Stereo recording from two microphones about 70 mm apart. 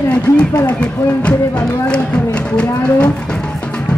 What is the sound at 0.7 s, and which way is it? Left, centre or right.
Speech, centre.